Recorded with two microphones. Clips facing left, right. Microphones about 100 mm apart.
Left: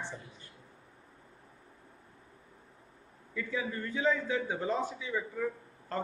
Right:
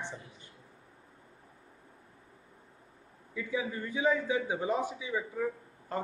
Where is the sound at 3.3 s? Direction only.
15° right (ahead or behind).